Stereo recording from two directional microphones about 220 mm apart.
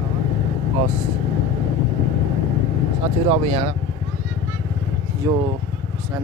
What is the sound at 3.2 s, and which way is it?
Speech, 25° right (ahead or behind).